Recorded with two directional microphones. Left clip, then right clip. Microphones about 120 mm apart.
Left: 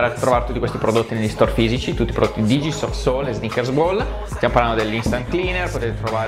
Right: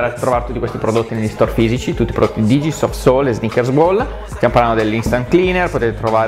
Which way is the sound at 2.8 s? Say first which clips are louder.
Right 7 dB; 80° right.